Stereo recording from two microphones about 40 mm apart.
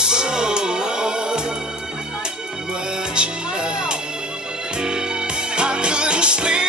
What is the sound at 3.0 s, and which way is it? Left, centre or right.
Music, right.